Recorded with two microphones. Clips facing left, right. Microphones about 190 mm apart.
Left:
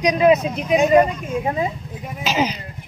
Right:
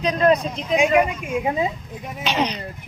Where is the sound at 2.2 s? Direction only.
5° left (ahead or behind).